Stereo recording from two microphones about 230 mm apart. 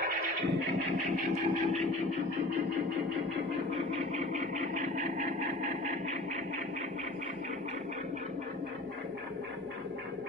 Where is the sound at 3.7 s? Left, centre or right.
Right.